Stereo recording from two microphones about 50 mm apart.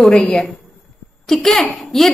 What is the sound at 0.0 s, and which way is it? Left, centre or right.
A woman's voice, centre.